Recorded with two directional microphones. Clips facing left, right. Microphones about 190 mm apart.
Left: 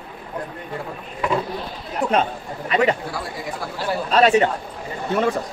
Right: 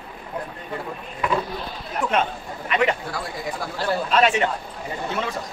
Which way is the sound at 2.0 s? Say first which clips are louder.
Left 3 dB; 35° left (ahead or behind).